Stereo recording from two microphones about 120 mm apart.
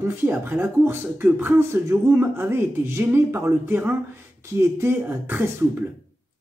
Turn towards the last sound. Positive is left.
turn(degrees=-15)  # may be behind; listen again after turning